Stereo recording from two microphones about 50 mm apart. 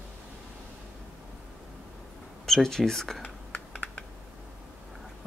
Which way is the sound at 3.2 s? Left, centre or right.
Left.